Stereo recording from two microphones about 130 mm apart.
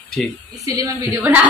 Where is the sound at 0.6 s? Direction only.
25° right (ahead or behind).